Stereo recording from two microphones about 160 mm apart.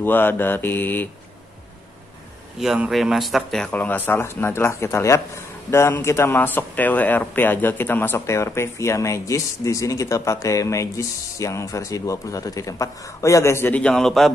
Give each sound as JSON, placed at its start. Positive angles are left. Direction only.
{"t": 0.0, "sound": "speech", "side_deg": 15}
{"t": 2.6, "sound": "speech", "side_deg": -5}